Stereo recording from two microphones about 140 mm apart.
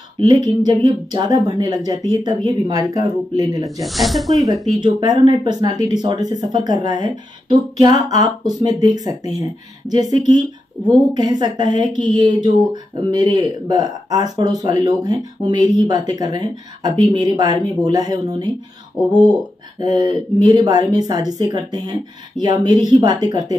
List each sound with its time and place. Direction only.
0.2 s speech: 25° right (ahead or behind)
3.8 s speech: centre (ahead or behind)
4.7 s speech: 30° right (ahead or behind)
8.2 s speech: 25° right (ahead or behind)
19.8 s speech: 30° right (ahead or behind)